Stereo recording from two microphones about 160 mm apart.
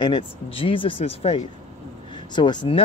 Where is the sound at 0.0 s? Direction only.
30° left (ahead or behind).